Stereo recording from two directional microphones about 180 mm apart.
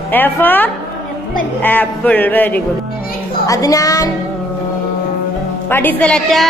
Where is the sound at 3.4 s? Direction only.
20° left (ahead or behind).